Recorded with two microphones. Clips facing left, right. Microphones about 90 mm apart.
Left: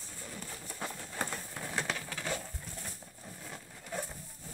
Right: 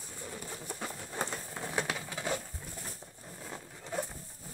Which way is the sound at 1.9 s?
15° right (ahead or behind).